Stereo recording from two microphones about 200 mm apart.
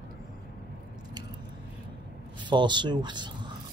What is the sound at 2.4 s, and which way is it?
Speech, 25° right (ahead or behind).